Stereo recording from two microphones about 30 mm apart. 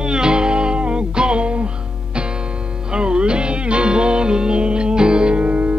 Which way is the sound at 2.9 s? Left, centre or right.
Right.